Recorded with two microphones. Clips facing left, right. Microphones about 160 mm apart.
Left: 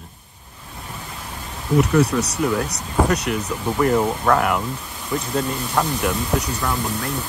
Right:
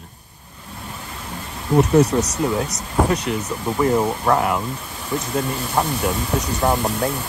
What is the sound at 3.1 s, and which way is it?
Speech, 70° left (ahead or behind).